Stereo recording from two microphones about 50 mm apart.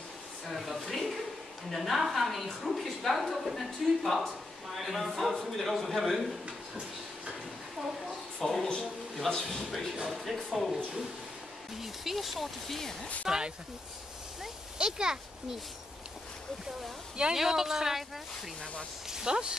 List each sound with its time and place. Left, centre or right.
0.5 s a sound: centre
1.7 s a woman's voice: centre
8.4 s a woman's voice: centre
11.8 s a woman's voice: centre
13.2 s speech: centre
14.4 s a sound: centre
17.2 s speech: centre
19.0 s speech: centre